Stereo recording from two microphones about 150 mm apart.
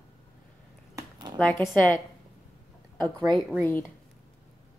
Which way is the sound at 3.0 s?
25° right (ahead or behind).